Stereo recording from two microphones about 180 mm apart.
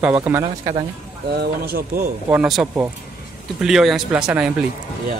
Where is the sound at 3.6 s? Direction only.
Centre (ahead or behind).